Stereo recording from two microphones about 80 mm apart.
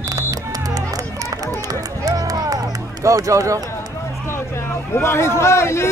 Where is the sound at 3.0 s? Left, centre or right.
Right.